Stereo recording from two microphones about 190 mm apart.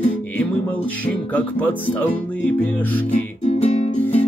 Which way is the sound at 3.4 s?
35° left (ahead or behind).